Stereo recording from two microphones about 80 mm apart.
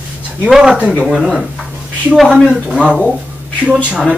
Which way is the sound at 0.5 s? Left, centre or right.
Centre.